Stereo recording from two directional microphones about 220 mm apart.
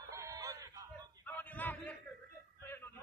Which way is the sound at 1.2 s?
5° left (ahead or behind).